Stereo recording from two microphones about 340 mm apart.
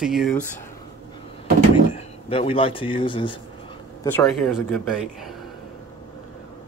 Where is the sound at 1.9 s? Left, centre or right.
Centre.